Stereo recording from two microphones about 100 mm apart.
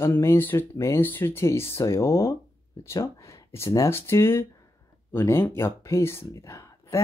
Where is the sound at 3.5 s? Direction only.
30° left (ahead or behind).